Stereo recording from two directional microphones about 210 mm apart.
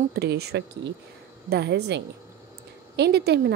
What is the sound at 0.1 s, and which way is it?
A woman's voice, 50° right (ahead or behind).